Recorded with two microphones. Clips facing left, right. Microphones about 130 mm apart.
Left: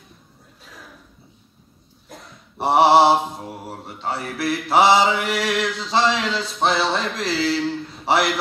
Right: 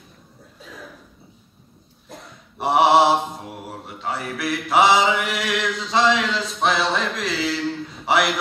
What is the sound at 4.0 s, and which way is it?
Speech, 30° left (ahead or behind).